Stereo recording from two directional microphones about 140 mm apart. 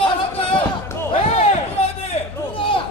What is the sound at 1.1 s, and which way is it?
Basketball bounce, 45° left (ahead or behind).